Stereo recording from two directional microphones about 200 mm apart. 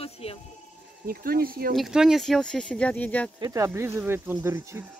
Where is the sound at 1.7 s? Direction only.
Centre (ahead or behind).